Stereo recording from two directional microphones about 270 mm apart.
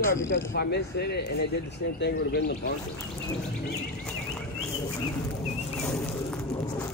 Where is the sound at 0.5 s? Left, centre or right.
Left.